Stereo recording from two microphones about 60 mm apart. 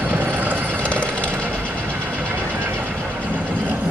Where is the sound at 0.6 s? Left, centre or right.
Left.